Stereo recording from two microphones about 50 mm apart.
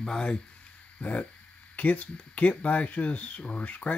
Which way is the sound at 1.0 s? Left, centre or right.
Left.